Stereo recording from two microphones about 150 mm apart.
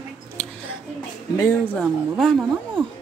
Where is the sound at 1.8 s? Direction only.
Centre (ahead or behind).